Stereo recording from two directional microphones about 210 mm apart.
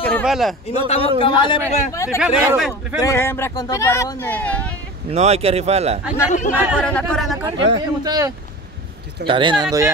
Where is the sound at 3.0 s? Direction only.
15° left (ahead or behind).